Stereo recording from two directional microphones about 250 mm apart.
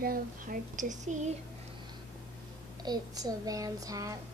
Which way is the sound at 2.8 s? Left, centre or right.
Centre.